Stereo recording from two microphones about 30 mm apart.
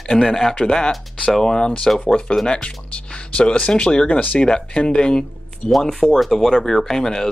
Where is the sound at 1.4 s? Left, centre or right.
Left.